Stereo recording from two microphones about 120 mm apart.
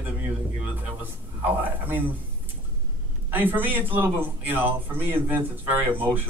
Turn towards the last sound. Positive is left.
turn(degrees=-15)  # may be behind; listen again after turning